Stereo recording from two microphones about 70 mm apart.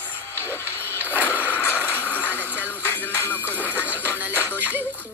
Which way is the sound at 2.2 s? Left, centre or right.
Right.